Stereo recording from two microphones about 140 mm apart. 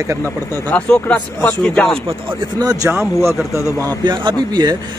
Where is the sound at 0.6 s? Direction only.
10° left (ahead or behind).